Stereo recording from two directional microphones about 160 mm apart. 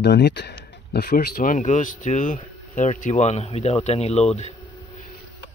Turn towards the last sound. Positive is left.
turn(degrees=45)  # may be behind; listen again after turning